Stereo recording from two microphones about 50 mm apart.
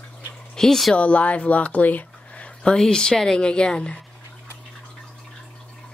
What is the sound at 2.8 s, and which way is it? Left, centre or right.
Speech, centre.